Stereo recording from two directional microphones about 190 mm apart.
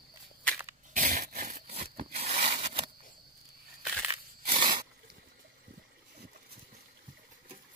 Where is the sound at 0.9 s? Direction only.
40° right (ahead or behind).